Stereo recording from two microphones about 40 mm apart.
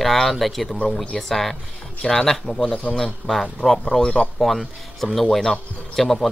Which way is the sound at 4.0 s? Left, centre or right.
Centre.